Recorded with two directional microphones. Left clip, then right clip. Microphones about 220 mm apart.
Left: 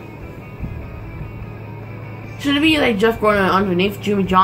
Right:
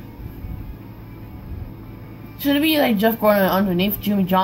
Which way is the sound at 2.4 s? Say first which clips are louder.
Left 2 dB; 30° right (ahead or behind).